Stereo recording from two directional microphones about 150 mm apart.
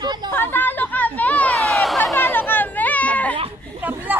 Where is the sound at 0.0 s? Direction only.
30° right (ahead or behind).